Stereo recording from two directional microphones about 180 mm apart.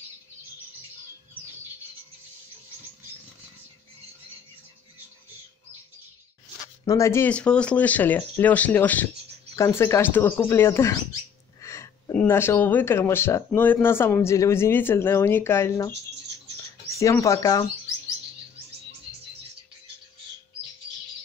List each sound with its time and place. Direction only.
6.8 s speech: 15° left (ahead or behind)
16.9 s speech: 15° left (ahead or behind)